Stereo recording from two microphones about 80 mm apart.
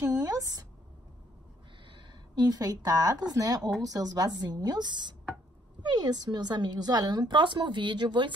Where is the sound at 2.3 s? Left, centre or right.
Right.